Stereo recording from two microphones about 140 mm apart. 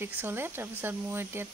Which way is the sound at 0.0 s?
15° right (ahead or behind).